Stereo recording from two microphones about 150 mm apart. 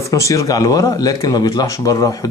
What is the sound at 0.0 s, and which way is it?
Speech, 20° left (ahead or behind).